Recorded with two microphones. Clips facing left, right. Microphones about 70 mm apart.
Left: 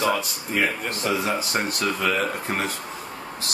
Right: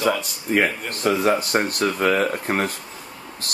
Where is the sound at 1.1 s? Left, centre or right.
Right.